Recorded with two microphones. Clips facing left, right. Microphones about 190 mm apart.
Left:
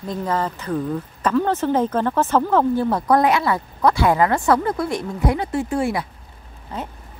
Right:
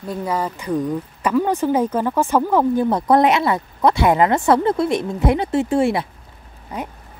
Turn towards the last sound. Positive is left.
turn(degrees=-15)  # may be behind; listen again after turning